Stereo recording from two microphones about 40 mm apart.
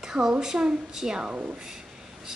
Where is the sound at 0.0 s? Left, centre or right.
Centre.